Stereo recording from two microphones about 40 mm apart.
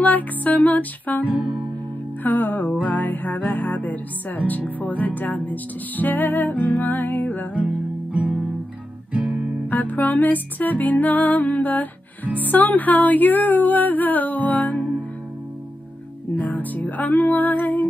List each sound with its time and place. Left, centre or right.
0.0 s music: left
1.2 s music: right
2.2 s music: left
8.1 s music: right
9.7 s music: left
16.3 s music: left